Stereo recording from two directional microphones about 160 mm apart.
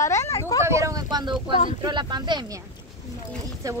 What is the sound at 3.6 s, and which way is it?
Speech, 20° right (ahead or behind).